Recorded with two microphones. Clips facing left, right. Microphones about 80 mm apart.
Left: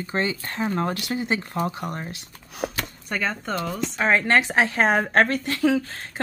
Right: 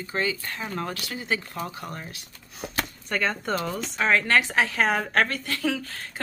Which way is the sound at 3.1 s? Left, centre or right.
Centre.